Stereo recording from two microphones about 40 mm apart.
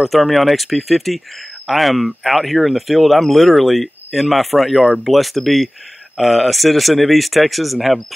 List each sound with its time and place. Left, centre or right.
0.0 s speech: centre